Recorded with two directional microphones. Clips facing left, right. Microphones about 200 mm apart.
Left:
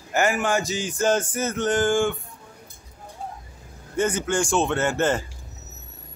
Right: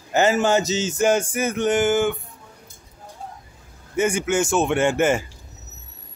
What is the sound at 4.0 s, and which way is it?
Male singing, 10° right (ahead or behind).